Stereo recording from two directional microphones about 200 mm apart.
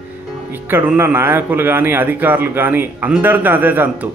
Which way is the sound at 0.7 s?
10° right (ahead or behind).